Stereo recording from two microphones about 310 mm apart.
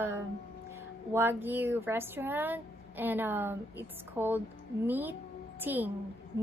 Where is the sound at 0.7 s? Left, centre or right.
Centre.